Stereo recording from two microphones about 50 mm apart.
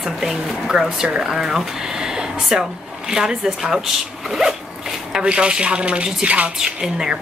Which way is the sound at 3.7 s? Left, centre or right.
Centre.